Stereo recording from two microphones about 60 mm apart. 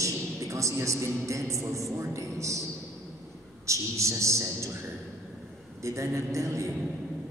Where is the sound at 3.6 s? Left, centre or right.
Right.